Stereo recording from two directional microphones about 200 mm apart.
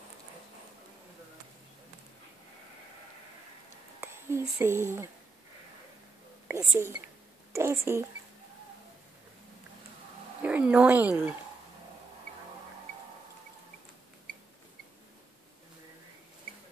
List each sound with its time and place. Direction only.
4.0 s speech: 10° right (ahead or behind)
6.4 s whispering: 15° right (ahead or behind)
7.5 s speech: 15° right (ahead or behind)
10.4 s speech: 5° right (ahead or behind)